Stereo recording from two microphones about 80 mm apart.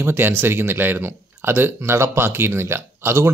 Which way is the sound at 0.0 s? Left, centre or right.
Right.